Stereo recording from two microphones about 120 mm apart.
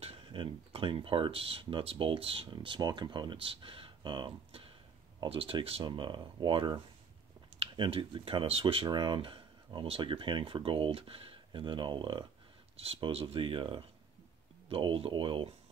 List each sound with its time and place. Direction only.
0.0 s speech: 50° right (ahead or behind)
12.7 s speech: 55° right (ahead or behind)